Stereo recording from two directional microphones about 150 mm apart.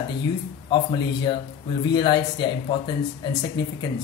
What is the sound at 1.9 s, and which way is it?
Speech, 30° left (ahead or behind).